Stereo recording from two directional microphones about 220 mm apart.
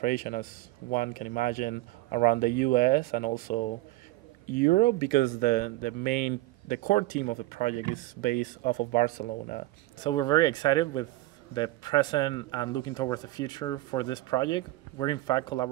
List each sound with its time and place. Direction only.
0.0 s speech: 40° left (ahead or behind)
9.9 s speech: 20° left (ahead or behind)